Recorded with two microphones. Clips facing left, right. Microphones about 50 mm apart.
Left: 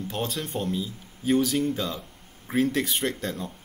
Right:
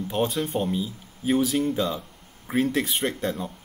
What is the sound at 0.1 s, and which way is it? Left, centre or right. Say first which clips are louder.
A man's voice: right 6 dB; centre.